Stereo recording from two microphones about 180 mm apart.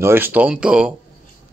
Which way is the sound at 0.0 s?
10° right (ahead or behind).